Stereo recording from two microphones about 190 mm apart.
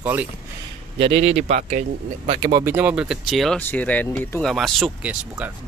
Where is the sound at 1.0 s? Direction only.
30° right (ahead or behind).